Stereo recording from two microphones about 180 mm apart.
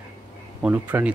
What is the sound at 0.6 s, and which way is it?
Speech, 10° right (ahead or behind).